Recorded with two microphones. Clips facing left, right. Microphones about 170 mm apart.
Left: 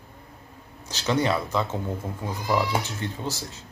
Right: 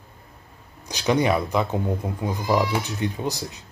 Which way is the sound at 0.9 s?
15° right (ahead or behind).